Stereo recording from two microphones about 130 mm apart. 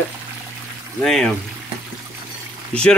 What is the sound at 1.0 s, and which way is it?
Speech, 5° left (ahead or behind).